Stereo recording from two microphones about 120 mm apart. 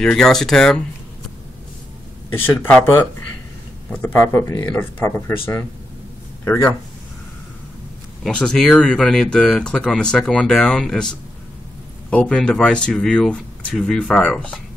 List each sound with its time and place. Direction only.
0.0 s speech: 5° left (ahead or behind)
2.6 s speech: 15° left (ahead or behind)
8.2 s speech: 5° left (ahead or behind)